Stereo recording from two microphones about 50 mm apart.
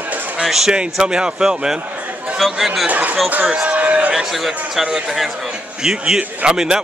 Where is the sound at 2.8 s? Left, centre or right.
Right.